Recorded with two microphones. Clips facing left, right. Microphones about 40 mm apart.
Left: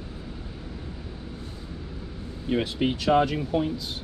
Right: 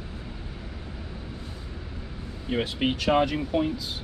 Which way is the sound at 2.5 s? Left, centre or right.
Right.